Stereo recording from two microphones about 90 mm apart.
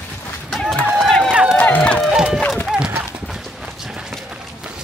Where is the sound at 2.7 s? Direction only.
10° right (ahead or behind).